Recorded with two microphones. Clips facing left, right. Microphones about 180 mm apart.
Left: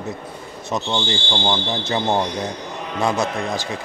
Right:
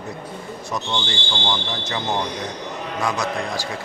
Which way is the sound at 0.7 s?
20° left (ahead or behind).